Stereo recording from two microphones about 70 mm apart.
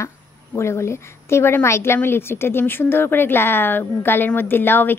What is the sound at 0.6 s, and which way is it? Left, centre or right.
A woman's voice, left.